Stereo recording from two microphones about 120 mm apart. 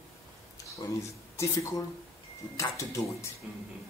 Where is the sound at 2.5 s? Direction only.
25° left (ahead or behind).